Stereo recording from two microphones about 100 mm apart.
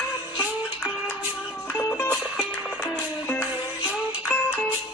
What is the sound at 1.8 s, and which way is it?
Music, 30° left (ahead or behind).